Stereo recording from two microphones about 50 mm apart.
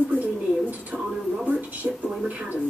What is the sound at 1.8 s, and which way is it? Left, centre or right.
Speech, right.